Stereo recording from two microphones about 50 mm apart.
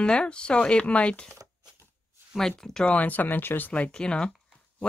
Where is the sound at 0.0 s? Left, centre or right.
Centre.